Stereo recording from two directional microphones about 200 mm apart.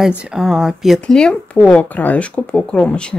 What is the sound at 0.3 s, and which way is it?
Speech, 5° right (ahead or behind).